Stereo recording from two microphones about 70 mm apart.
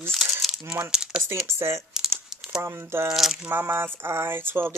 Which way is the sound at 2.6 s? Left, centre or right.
Right.